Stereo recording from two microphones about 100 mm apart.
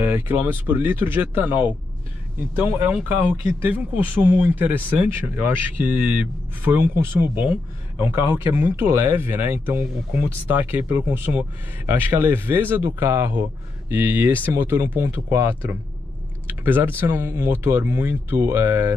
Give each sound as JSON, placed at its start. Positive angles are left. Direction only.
{"t": 0.0, "sound": "speech", "side_deg": -20}